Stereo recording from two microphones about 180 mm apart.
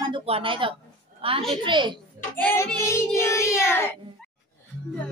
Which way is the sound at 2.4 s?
10° left (ahead or behind).